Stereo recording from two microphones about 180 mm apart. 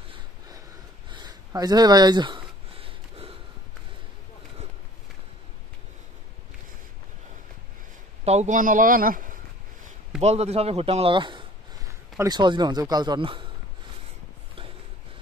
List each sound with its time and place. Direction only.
1.1 s a sound: 20° right (ahead or behind)
8.3 s speech: 40° right (ahead or behind)
10.2 s speech: 35° right (ahead or behind)